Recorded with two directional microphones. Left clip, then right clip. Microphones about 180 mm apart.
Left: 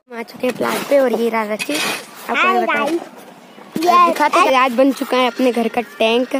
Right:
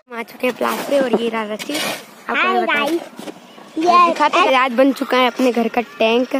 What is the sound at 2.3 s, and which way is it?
Speech, 20° left (ahead or behind).